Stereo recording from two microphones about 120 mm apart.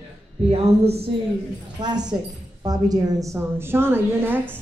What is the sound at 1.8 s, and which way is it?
A woman's voice, 35° right (ahead or behind).